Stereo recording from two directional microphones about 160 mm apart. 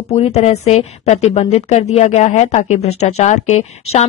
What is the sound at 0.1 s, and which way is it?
A woman's voice, 40° left (ahead or behind).